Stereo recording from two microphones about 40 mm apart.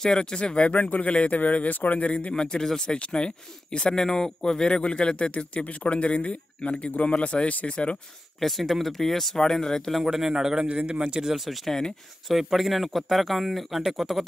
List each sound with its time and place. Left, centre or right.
0.0 s speech: centre; by 2.0 s left
2.3 s a man's voice: left
8.4 s speech: centre
9.9 s speech: centre
10.6 s speech: right; by 14.2 s centre